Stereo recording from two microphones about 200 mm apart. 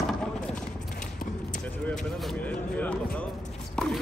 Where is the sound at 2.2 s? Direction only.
5° left (ahead or behind).